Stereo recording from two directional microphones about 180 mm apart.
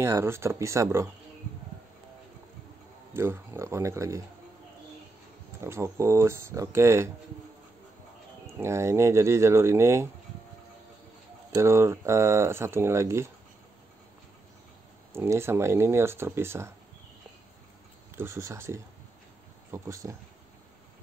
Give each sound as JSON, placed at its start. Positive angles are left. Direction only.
{"t": 0.0, "sound": "speech", "side_deg": -15}
{"t": 3.1, "sound": "speech", "side_deg": -15}
{"t": 5.6, "sound": "speech", "side_deg": -15}
{"t": 8.5, "sound": "speech", "side_deg": -15}
{"t": 11.5, "sound": "speech", "side_deg": -15}
{"t": 15.1, "sound": "speech", "side_deg": -15}
{"t": 18.1, "sound": "speech", "side_deg": -15}